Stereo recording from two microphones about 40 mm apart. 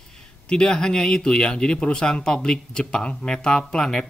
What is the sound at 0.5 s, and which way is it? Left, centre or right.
Speech, left.